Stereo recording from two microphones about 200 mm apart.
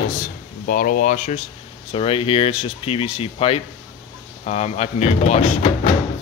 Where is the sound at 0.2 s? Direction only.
45° left (ahead or behind).